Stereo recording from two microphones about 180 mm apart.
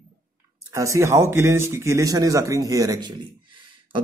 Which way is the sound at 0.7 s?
15° right (ahead or behind).